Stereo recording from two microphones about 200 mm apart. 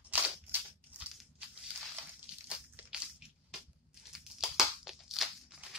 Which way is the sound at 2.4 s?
5° right (ahead or behind).